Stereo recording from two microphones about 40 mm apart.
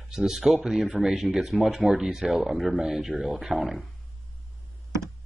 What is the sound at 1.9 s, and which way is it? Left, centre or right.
A man's voice, centre.